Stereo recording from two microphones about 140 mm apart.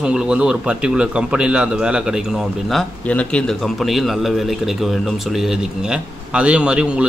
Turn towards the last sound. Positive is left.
turn(degrees=-5)  # may be behind; listen again after turning